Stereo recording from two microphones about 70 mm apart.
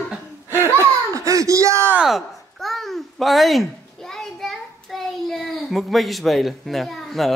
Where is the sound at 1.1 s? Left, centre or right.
Right.